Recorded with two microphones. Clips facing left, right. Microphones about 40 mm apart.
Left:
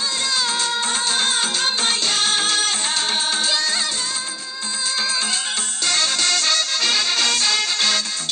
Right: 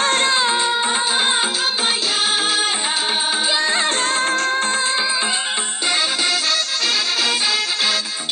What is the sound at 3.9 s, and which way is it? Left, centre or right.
Music, right.